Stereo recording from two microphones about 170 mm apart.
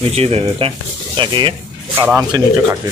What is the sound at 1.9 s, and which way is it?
Speech, 10° right (ahead or behind).